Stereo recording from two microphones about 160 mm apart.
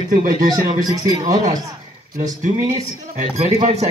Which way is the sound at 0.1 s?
60° right (ahead or behind).